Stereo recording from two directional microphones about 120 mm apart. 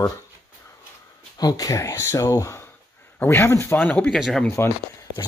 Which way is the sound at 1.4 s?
30° left (ahead or behind).